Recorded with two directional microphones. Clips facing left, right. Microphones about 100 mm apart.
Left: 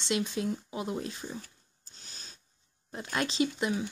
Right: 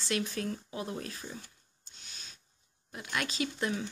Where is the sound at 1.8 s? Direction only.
40° left (ahead or behind).